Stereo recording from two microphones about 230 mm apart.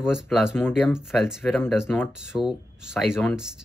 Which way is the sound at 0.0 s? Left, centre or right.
Centre.